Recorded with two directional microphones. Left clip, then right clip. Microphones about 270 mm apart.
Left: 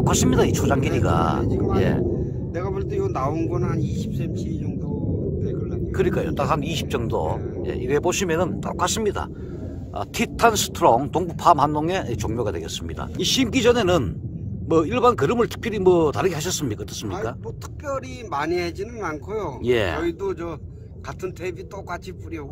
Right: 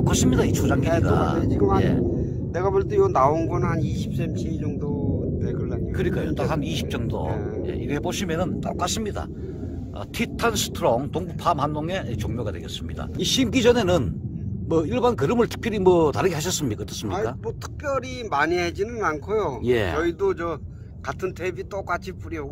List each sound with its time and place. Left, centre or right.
0.0 s speech: centre
1.5 s speech: centre
1.8 s speech: centre
2.5 s speech: centre
5.4 s a sound: centre
5.9 s speech: centre
13.2 s speech: centre